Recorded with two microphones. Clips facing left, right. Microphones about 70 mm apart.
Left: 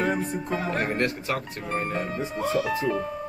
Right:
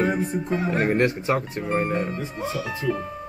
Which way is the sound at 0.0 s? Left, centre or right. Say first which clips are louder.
Right 3 dB; centre.